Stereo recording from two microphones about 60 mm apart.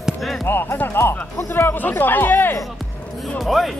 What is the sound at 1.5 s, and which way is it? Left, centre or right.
Speech, left.